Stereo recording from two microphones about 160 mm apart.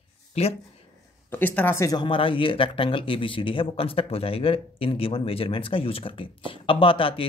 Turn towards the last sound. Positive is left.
turn(degrees=35)  # may be behind; listen again after turning